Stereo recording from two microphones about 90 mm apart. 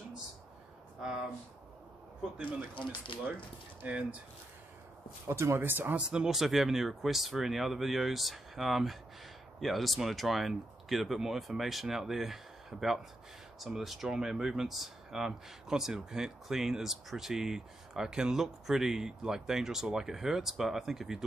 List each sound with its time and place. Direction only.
2.8 s speech: 65° left (ahead or behind)
3.8 s speech: 15° right (ahead or behind)
5.3 s speech: 30° right (ahead or behind)
6.0 s speech: 5° right (ahead or behind)